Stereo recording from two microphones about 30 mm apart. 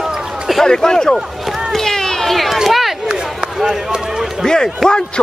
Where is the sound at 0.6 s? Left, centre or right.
Left.